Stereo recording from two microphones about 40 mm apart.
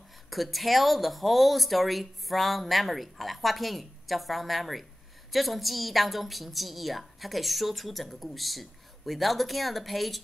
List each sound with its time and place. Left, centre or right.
0.3 s a woman's voice: centre